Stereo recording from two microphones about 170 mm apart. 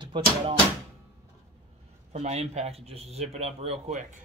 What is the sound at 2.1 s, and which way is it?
Speech, 40° right (ahead or behind).